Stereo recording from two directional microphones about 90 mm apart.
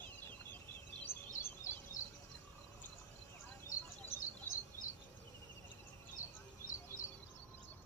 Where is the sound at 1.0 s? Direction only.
25° left (ahead or behind).